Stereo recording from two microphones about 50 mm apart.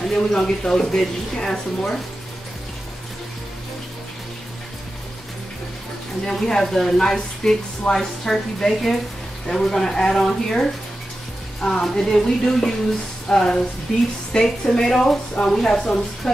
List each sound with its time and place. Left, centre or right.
0.0 s speech: centre
6.2 s speech: centre